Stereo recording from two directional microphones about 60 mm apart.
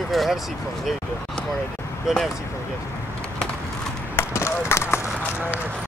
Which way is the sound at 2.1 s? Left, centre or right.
Centre.